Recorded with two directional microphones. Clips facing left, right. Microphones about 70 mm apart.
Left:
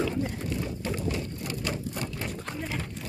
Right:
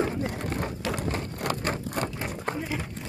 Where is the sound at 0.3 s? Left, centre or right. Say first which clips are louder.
Right 2 dB; right.